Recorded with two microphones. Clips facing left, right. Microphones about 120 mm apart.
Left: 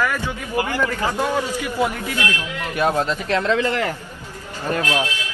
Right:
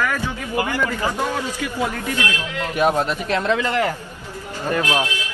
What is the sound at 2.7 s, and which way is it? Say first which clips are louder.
Speech: right 1 dB; 15° right (ahead or behind).